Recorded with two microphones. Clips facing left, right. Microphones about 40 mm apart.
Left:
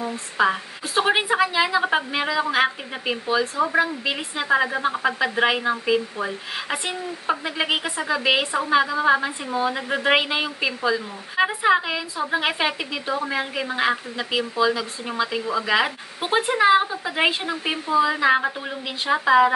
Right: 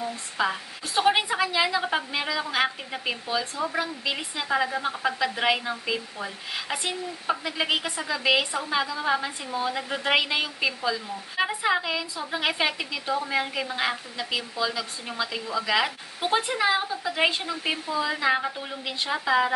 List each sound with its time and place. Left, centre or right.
0.4 s a woman's voice: centre